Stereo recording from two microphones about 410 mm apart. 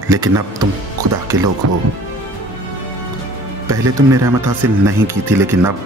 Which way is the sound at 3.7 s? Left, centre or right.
Centre.